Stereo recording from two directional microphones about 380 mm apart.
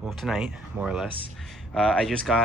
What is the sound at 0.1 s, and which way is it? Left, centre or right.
Speech, centre.